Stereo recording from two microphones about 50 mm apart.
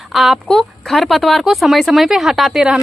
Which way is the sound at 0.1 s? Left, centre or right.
Centre.